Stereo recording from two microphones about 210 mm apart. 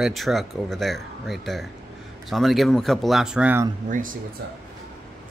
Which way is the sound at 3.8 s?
40° right (ahead or behind).